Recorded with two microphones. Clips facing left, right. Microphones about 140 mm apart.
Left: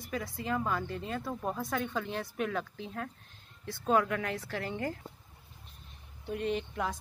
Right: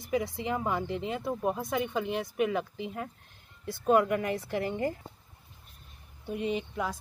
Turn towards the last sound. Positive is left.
turn(degrees=0)  # may be behind; listen again after turning